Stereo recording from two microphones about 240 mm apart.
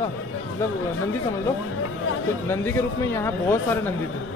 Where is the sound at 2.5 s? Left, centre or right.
Centre.